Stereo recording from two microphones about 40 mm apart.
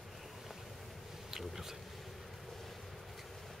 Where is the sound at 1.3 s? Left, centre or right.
Centre.